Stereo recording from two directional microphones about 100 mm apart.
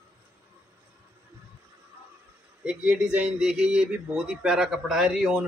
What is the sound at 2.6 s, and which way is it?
Speech, 10° right (ahead or behind).